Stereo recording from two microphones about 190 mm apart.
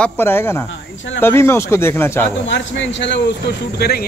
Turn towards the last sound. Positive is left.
turn(degrees=55)  # may be behind; listen again after turning